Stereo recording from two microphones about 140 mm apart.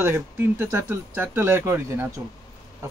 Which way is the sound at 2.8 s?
20° right (ahead or behind).